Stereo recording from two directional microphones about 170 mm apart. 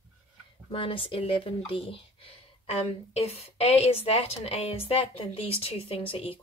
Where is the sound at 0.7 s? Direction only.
30° left (ahead or behind).